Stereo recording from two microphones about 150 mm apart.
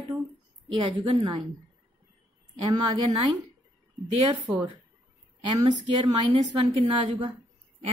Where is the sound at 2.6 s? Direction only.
30° right (ahead or behind).